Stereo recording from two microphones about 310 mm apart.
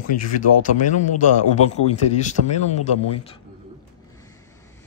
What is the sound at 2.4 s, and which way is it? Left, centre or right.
Speech, right.